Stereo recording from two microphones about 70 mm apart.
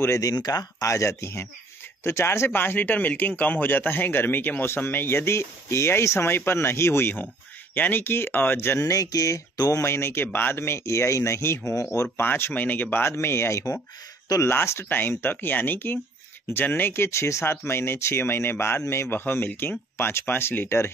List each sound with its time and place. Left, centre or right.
0.2 s speech: left
0.7 s speech: left
8.7 s speech: left
9.8 s speech: left
12.2 s speech: left